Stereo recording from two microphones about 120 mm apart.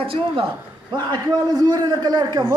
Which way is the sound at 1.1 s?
35° right (ahead or behind).